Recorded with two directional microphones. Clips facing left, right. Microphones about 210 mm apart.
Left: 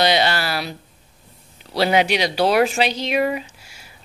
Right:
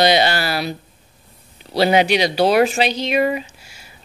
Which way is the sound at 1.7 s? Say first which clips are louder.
Right 3 dB; centre (ahead or behind).